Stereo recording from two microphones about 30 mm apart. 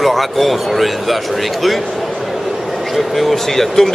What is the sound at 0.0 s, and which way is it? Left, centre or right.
Speech, centre.